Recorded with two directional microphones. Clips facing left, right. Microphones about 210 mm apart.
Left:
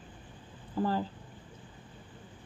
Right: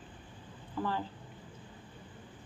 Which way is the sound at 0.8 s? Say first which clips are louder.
Left 4 dB; 40° left (ahead or behind).